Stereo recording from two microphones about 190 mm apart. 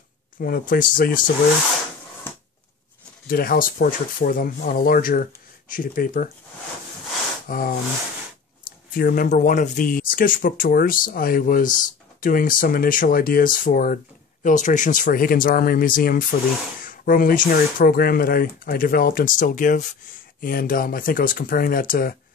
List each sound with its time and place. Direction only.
0.4 s speech: 45° left (ahead or behind)
3.3 s speech: 50° left (ahead or behind)
7.4 s speech: 50° left (ahead or behind)
8.9 s speech: 45° left (ahead or behind)